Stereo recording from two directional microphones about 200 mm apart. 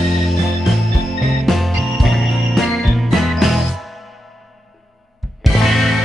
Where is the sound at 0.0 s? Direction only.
Centre (ahead or behind).